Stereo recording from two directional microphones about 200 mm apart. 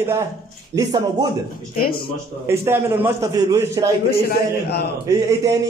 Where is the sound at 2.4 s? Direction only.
10° right (ahead or behind).